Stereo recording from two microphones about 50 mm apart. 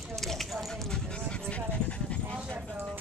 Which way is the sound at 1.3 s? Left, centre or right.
Left.